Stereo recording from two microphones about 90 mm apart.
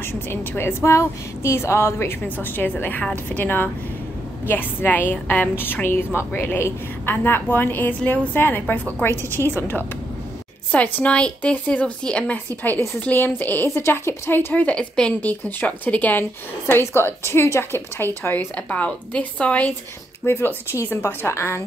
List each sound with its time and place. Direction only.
0.0 s a woman's voice: 25° left (ahead or behind)
10.7 s a woman's voice: 15° left (ahead or behind)
20.2 s a woman's voice: 25° left (ahead or behind)